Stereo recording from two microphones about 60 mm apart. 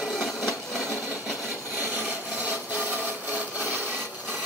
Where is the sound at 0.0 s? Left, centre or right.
Centre.